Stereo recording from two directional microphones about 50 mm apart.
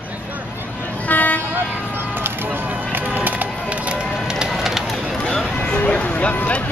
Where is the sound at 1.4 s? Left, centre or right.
Right.